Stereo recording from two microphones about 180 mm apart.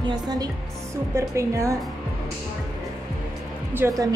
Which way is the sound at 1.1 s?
15° right (ahead or behind).